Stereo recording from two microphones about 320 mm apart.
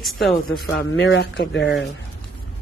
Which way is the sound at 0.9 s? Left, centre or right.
Left.